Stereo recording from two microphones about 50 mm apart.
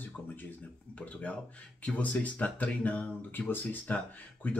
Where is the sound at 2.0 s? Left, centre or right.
Left.